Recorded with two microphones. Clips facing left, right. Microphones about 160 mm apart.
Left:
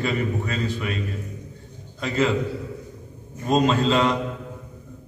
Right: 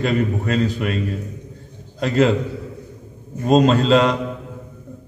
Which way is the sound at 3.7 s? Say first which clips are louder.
Right 5 dB; 40° right (ahead or behind).